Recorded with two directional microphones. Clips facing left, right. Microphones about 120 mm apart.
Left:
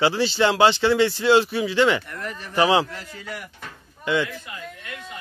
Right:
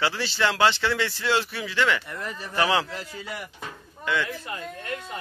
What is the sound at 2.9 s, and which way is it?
Speech, 15° right (ahead or behind).